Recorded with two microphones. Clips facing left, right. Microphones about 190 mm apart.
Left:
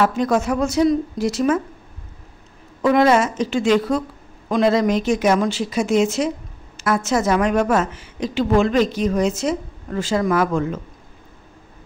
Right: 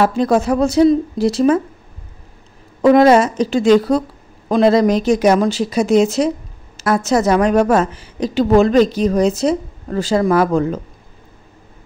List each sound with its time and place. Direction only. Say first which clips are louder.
0.0 s a woman's voice: right 4 dB; 35° right (ahead or behind)
2.8 s a woman's voice: right 5 dB; 40° right (ahead or behind)